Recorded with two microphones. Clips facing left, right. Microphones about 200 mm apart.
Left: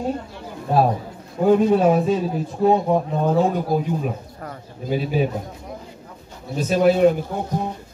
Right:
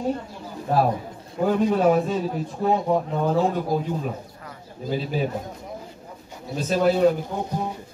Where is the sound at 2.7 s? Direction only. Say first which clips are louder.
Even; 20° left (ahead or behind).